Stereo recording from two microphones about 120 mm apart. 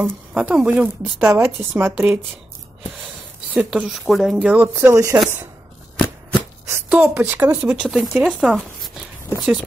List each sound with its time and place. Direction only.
0.0 s a woman's voice: 10° right (ahead or behind)
3.5 s speech: 5° right (ahead or behind)
4.7 s speech: 25° right (ahead or behind)
6.7 s a sound: 15° right (ahead or behind)
7.4 s a woman's voice: 10° right (ahead or behind)